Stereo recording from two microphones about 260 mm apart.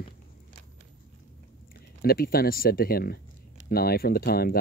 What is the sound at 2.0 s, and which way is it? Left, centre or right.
Speech, left.